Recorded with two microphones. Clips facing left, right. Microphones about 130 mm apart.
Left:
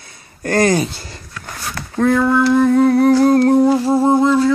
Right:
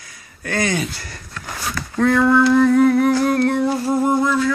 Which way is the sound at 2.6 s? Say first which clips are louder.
Left 2 dB; 30° left (ahead or behind).